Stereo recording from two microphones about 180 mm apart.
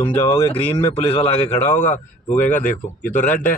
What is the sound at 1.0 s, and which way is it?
A man's voice, 35° left (ahead or behind).